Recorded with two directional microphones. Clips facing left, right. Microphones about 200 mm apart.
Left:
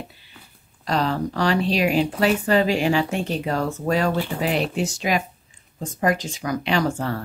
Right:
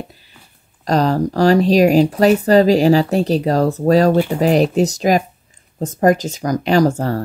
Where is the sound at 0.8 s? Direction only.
40° right (ahead or behind).